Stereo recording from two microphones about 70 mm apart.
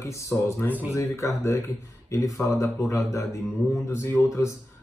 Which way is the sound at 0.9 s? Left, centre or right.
Left.